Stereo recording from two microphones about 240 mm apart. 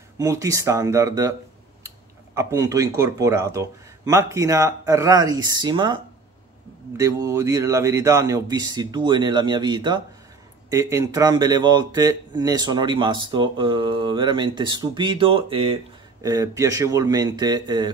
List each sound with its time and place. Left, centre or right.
0.2 s speech: centre
2.3 s speech: centre
7.0 s speech: centre